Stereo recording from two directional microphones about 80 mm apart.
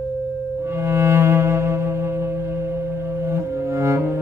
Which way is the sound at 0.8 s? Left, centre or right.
Right.